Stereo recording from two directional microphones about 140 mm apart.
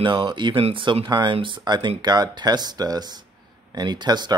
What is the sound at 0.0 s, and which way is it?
Speech, 35° right (ahead or behind).